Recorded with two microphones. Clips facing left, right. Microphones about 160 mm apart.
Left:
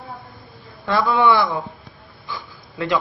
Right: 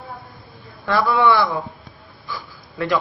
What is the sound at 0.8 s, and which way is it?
Speech, 20° left (ahead or behind).